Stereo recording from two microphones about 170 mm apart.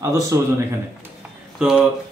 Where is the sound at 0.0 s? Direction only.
20° right (ahead or behind).